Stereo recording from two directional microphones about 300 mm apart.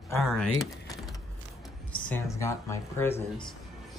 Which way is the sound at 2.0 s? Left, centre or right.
Centre.